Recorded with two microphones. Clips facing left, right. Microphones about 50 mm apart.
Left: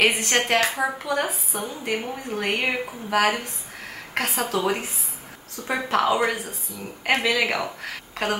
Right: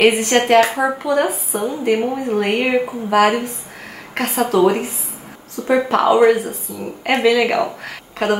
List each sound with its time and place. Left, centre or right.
0.0 s a woman's voice: centre